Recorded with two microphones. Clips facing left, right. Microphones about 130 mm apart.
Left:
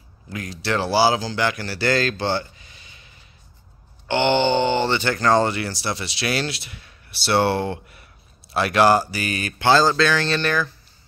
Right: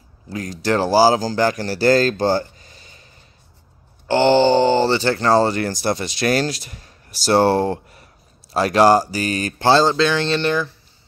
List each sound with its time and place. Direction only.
0.3 s speech: 40° right (ahead or behind)
4.1 s speech: 35° right (ahead or behind)
5.6 s speech: 45° right (ahead or behind); by 10.7 s 25° right (ahead or behind)